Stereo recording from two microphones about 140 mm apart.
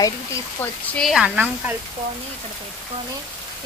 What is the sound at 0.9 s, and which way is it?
Speech, centre (ahead or behind).